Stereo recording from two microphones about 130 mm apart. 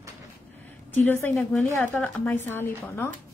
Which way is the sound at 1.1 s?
15° left (ahead or behind).